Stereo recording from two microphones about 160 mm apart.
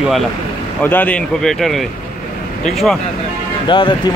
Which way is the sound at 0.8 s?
10° left (ahead or behind).